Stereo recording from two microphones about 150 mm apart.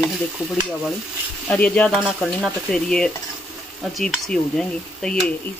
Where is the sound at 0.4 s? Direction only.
10° right (ahead or behind).